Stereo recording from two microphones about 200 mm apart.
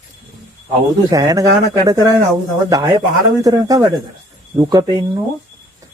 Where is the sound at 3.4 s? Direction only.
15° right (ahead or behind).